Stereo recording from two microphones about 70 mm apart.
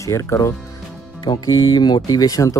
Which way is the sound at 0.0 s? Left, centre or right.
Left.